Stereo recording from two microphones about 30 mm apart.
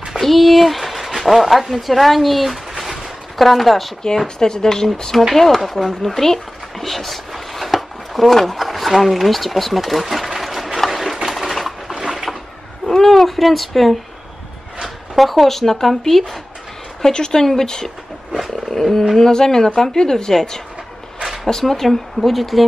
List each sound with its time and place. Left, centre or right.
0.2 s speech: centre
2.8 s a sound: centre
3.4 s speech: centre
4.4 s a woman's voice: centre
10.9 s train: centre
11.2 s a sound: centre
12.8 s speech: centre
15.1 s a woman's voice: centre
17.1 s speech: left
18.7 s a woman's voice: centre
21.8 s speech: centre